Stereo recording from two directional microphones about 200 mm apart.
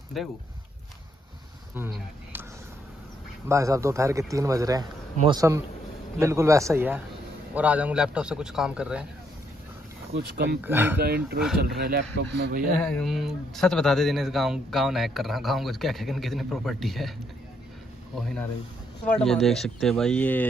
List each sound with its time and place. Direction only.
0.2 s speech: centre (ahead or behind)
3.4 s speech: 15° right (ahead or behind)
10.1 s a man's voice: 50° right (ahead or behind)
10.6 s speech: 10° right (ahead or behind)
11.0 s a man's voice: 50° right (ahead or behind)
12.8 s speech: centre (ahead or behind)
19.0 s speech: 5° left (ahead or behind)